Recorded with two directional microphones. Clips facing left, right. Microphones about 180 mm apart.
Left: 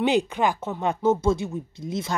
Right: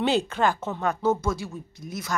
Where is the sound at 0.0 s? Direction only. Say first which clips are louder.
Left 1 dB; 15° left (ahead or behind).